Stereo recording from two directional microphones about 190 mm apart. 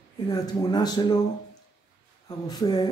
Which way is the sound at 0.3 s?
20° left (ahead or behind).